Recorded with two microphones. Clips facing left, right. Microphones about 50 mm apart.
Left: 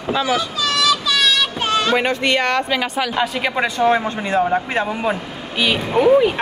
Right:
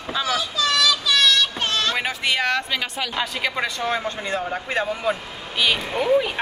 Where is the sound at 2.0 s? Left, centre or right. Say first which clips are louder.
Left 5 dB; centre.